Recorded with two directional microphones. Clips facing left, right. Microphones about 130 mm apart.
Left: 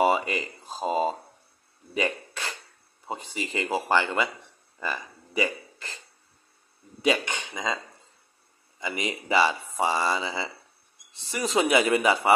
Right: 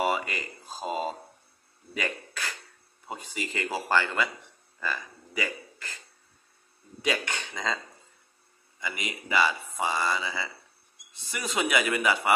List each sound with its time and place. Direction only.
0.0 s speech: 25° left (ahead or behind)
2.0 s a sound: 25° left (ahead or behind)
3.1 s speech: 25° left (ahead or behind)
4.7 s a sound: 20° left (ahead or behind)
7.0 s speech: 20° left (ahead or behind)
8.7 s speech: 30° left (ahead or behind)